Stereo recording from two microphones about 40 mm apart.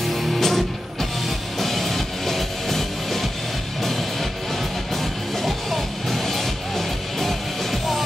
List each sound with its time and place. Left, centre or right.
0.0 s music: centre